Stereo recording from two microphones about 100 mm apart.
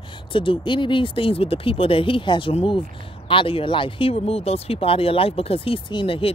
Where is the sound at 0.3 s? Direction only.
55° left (ahead or behind).